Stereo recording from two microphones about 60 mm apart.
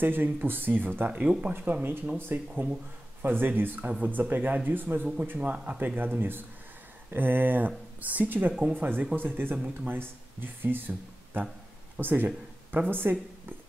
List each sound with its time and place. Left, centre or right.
0.0 s speech: right
12.0 s speech: right